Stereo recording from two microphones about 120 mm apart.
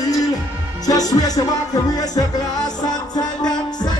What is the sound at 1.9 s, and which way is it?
Music, 30° left (ahead or behind).